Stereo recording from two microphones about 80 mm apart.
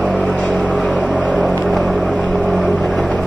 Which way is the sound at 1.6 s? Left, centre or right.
Centre.